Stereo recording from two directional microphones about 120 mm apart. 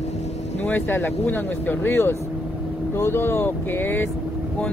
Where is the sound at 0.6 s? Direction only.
15° left (ahead or behind).